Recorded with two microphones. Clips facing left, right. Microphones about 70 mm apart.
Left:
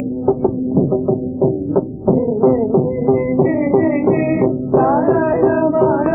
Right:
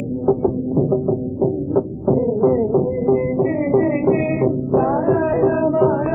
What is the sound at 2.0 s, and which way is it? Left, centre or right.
Music, centre.